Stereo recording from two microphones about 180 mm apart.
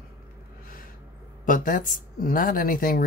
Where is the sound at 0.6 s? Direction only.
50° left (ahead or behind).